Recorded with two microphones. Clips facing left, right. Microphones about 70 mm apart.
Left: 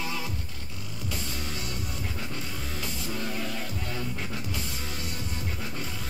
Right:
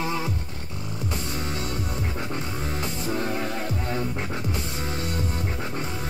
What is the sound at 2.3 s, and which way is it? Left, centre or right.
Music, right.